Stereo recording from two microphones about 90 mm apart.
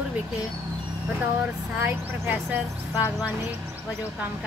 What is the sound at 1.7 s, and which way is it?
Speech, 20° right (ahead or behind).